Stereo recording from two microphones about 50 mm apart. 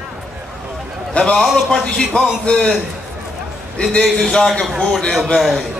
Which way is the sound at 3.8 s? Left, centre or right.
Centre.